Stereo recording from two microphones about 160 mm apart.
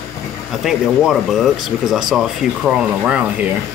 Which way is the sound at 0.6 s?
Centre (ahead or behind).